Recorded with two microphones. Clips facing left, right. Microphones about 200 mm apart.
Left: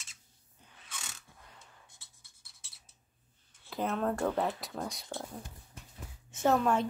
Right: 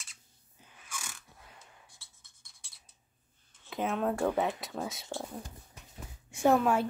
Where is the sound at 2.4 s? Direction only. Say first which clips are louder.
Right 1 dB; centre (ahead or behind).